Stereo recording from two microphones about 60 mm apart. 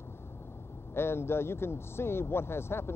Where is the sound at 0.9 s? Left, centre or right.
Left.